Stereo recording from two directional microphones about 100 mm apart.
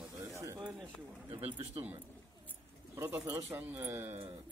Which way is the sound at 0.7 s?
Centre (ahead or behind).